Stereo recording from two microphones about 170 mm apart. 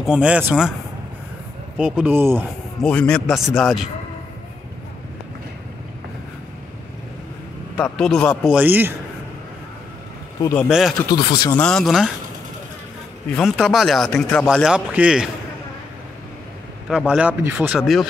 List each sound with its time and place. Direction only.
0.0 s speech: 5° right (ahead or behind)
1.8 s speech: 5° right (ahead or behind)
2.8 s speech: 5° left (ahead or behind)
7.7 s speech: 5° left (ahead or behind)
8.5 s speech: 10° right (ahead or behind)
10.7 s speech: centre (ahead or behind)
11.1 s speech: 25° left (ahead or behind)
11.6 s speech: centre (ahead or behind)
13.4 s speech: centre (ahead or behind)
16.9 s speech: 5° right (ahead or behind)